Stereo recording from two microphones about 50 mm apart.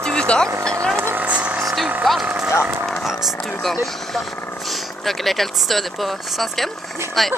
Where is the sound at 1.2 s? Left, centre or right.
Right.